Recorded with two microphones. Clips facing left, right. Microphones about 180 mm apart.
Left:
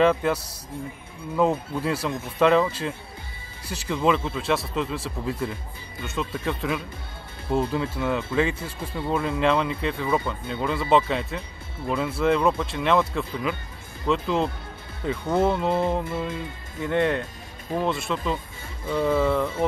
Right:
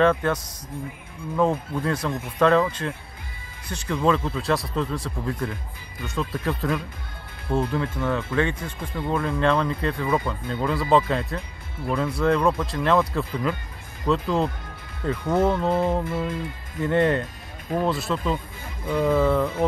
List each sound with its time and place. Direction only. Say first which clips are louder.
0.0 s a man's voice: even; 5° left (ahead or behind)
8.5 s speech: even; 35° left (ahead or behind)
8.9 s speech: even; 5° left (ahead or behind)